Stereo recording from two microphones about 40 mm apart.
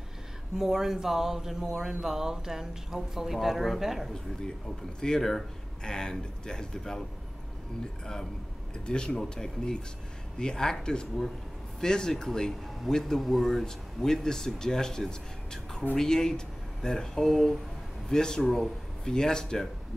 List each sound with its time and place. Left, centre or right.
0.6 s speech: centre
4.4 s speech: centre
12.9 s speech: centre